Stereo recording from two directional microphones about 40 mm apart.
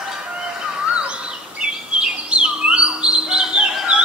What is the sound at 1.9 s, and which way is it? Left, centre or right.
Bird, right.